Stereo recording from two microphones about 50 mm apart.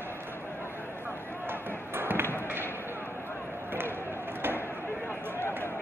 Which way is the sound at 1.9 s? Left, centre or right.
Right.